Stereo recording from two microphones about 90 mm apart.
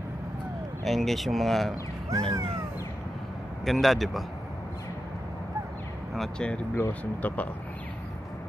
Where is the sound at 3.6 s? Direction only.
Centre (ahead or behind).